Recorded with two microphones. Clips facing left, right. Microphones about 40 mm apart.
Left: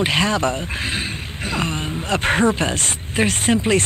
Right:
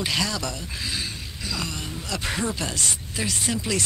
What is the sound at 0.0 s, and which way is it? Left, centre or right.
Speech, left.